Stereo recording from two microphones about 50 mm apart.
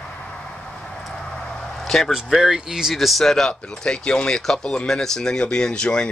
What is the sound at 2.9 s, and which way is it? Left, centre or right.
Speech, centre.